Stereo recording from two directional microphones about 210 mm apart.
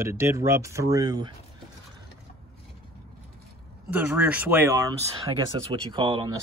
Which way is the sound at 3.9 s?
5° right (ahead or behind).